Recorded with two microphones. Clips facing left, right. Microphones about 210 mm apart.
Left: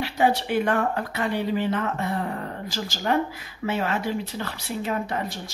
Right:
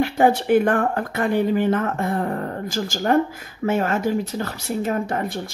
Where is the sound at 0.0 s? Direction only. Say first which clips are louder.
Right 5 dB; 50° right (ahead or behind).